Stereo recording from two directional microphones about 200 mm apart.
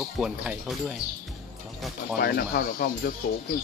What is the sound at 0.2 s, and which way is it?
Speech, 5° right (ahead or behind).